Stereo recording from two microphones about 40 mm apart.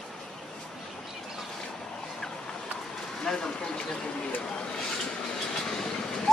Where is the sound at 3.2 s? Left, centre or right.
Centre.